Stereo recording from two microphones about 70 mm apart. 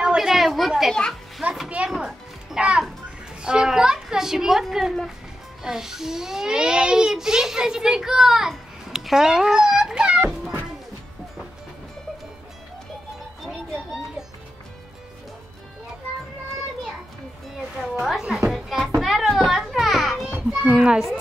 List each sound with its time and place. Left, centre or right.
0.0 s a sound: centre
2.0 s music: centre
3.4 s a child's voice: centre
17.8 s a woman's voice: centre
18.2 s music: centre
18.9 s children playing: centre
20.2 s children playing: right
20.7 s a child's voice: centre